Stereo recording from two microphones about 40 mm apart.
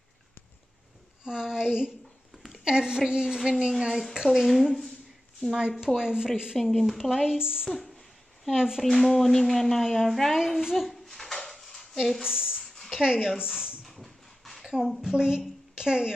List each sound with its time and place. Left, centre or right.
1.2 s a woman's voice: centre
2.3 s a sound: centre
2.6 s a woman's voice: right
4.4 s speech: centre
5.9 s a woman's voice: centre
6.5 s speech: centre
7.1 s a woman's voice: centre
8.8 s speech: centre
10.3 s a woman's voice: centre
10.9 s a sound: centre
11.3 s dishes: centre
12.2 s a woman's voice: centre
13.8 s a sound: centre
15.0 s a woman's voice: centre